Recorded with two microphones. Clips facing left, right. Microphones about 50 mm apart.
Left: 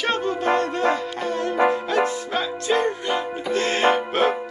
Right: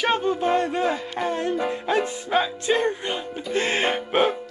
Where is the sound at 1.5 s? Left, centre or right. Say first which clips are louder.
Left 6 dB; left.